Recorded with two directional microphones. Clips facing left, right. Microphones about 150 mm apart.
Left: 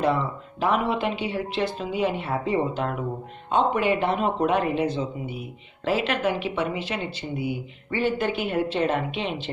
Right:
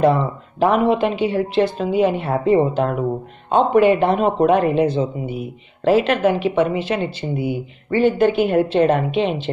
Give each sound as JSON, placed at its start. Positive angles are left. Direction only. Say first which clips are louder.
{"t": 0.0, "sound": "a woman's voice", "louder": "right 7 dB", "side_deg": -50}